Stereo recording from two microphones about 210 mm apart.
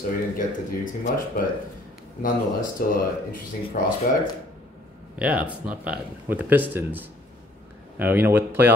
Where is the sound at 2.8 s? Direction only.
40° left (ahead or behind).